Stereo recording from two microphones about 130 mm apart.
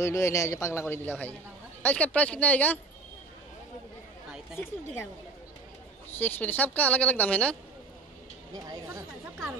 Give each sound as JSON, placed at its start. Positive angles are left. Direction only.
{"t": 0.0, "sound": "a man's voice", "side_deg": 20}
{"t": 6.1, "sound": "speech", "side_deg": 15}
{"t": 8.5, "sound": "speech", "side_deg": -25}